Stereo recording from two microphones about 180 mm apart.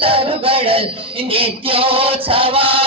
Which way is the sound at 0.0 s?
30° right (ahead or behind).